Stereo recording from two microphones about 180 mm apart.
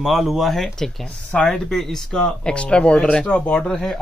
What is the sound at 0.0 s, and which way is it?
Speech, centre (ahead or behind).